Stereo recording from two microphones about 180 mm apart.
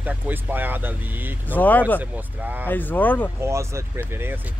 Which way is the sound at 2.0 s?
10° right (ahead or behind).